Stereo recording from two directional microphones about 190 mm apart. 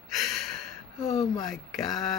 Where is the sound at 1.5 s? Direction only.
Centre (ahead or behind).